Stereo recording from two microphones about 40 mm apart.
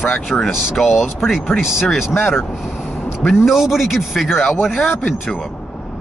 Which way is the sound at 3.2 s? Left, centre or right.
Centre.